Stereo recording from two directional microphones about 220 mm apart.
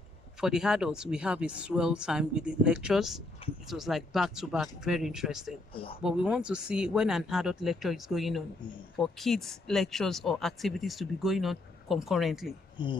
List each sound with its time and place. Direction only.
0.4 s speech: centre (ahead or behind)
5.7 s speech: 25° left (ahead or behind)
6.0 s speech: 5° right (ahead or behind)